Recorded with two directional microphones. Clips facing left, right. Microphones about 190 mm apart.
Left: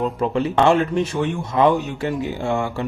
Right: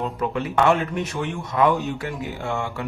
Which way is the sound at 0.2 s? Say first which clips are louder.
Left 3 dB; 30° left (ahead or behind).